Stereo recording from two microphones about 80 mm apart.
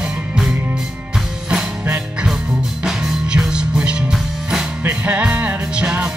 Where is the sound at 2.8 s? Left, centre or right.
Centre.